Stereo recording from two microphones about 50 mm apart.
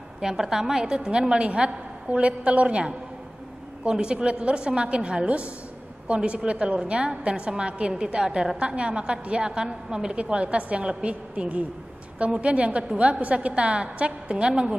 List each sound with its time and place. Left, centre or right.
0.2 s a woman's voice: centre